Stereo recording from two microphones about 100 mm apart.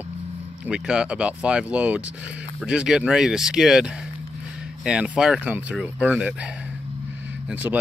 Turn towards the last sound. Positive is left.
turn(degrees=-15)  # may be behind; listen again after turning